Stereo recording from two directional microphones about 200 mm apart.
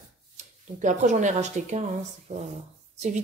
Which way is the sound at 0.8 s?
35° right (ahead or behind).